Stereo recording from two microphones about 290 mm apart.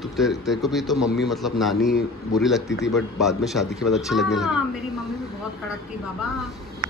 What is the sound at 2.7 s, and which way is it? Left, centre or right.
Speech, left.